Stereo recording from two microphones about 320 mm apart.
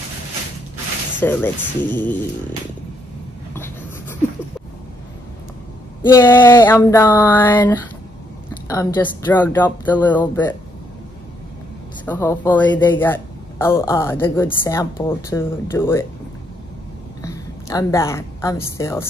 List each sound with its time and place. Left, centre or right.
1.2 s speech: centre
3.5 s writing: centre
6.0 s a man's voice: centre
12.1 s a man's voice: centre
17.2 s a woman's voice: centre